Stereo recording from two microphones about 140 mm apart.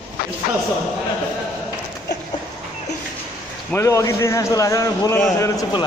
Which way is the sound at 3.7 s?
20° left (ahead or behind).